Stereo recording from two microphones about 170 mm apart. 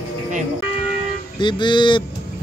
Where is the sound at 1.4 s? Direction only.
25° left (ahead or behind).